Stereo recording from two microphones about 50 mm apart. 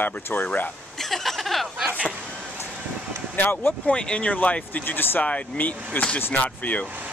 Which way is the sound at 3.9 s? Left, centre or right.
Centre.